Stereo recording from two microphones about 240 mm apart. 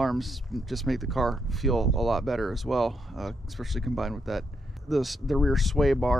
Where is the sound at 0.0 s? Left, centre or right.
Centre.